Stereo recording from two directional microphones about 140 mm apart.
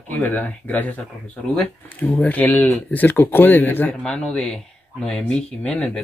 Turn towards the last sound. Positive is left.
turn(degrees=5)  # may be behind; listen again after turning